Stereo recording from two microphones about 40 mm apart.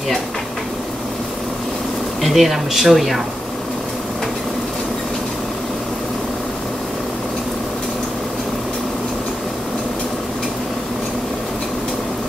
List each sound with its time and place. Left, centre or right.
2.2 s speech: centre